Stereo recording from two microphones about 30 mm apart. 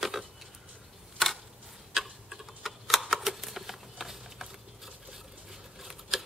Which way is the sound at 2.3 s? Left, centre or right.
Centre.